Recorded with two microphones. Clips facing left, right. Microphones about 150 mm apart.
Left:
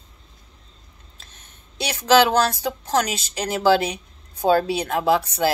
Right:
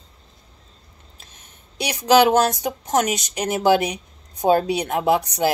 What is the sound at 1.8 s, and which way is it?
A woman's voice, 15° right (ahead or behind).